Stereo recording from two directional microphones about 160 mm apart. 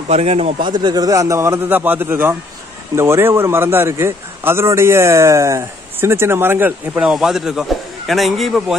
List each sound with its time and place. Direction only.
0.1 s speech: 40° right (ahead or behind)
0.7 s a man's voice: 25° right (ahead or behind); by 8.7 s centre (ahead or behind)